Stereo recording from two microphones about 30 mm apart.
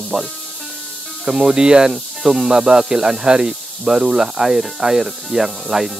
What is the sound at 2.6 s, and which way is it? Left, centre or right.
Speech, right.